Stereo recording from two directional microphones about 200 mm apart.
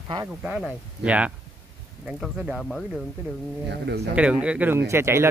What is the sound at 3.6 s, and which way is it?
Speech, 55° right (ahead or behind).